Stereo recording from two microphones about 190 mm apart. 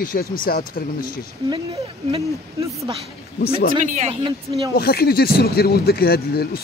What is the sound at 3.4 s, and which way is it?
Speech, 55° left (ahead or behind).